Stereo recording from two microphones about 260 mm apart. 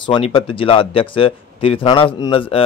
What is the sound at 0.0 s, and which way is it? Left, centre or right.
Speech, centre.